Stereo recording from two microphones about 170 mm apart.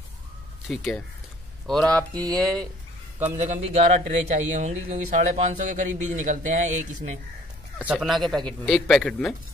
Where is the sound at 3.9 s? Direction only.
45° right (ahead or behind).